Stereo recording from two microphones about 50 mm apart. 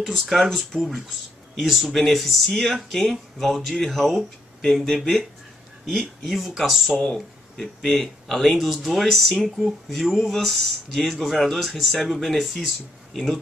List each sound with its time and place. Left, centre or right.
0.1 s speech: centre
6.9 s speech: centre
7.6 s speech: centre